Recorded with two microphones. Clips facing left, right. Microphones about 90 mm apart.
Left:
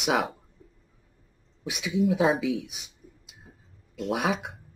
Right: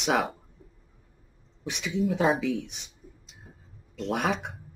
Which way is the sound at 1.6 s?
5° left (ahead or behind).